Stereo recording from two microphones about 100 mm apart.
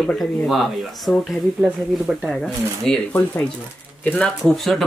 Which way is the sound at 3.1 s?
15° left (ahead or behind).